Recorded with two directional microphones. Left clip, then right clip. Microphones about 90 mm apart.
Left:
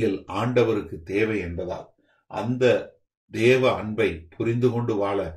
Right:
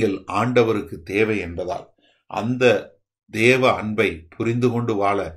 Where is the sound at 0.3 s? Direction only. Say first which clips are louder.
Right 4 dB; 20° right (ahead or behind).